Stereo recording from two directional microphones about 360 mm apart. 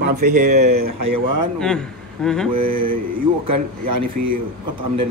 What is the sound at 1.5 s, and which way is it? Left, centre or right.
Speech, centre.